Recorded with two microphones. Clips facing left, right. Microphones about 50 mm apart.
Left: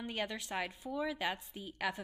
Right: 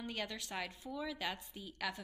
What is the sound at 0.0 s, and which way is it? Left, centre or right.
A woman's voice, centre.